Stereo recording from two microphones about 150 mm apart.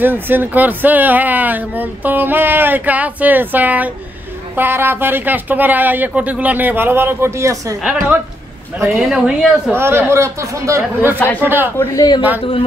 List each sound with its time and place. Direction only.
0.0 s speech: 15° right (ahead or behind)
8.8 s speech: 5° right (ahead or behind)
11.1 s a man's voice: 10° left (ahead or behind)
11.4 s speech: 15° right (ahead or behind)
11.8 s speech: 25° left (ahead or behind)